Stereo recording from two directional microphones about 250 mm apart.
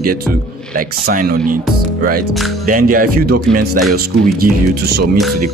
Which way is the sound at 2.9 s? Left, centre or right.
Right.